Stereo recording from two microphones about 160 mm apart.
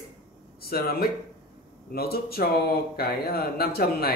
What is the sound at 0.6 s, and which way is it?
Speech, 75° left (ahead or behind).